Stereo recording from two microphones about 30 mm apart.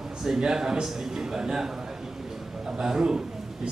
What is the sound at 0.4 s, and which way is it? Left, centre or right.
A man's voice, right.